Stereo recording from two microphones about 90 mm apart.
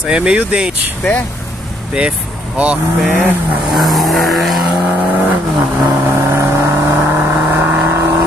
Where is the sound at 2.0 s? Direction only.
15° right (ahead or behind).